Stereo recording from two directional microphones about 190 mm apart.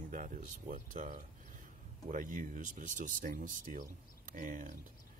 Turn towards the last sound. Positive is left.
turn(degrees=-45)  # may be behind; listen again after turning